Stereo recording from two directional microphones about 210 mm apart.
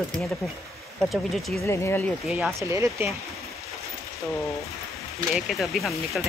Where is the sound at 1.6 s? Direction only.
10° left (ahead or behind).